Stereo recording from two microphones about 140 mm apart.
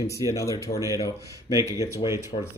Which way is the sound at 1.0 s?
25° right (ahead or behind).